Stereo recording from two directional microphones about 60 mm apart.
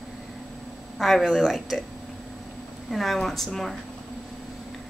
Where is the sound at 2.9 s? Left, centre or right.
Centre.